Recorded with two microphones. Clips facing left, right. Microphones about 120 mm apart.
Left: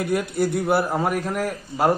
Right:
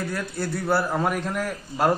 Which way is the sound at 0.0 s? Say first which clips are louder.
Left 7 dB; 15° left (ahead or behind).